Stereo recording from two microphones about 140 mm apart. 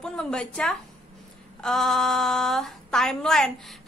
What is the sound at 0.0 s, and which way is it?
A woman's voice, 5° left (ahead or behind).